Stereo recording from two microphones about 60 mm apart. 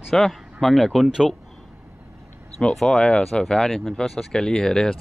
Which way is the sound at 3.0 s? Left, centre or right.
Centre.